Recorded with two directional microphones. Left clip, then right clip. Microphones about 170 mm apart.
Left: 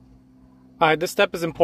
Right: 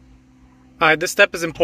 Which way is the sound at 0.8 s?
15° left (ahead or behind).